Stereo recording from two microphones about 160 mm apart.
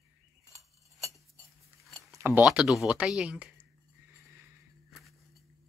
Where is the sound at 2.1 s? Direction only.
15° right (ahead or behind).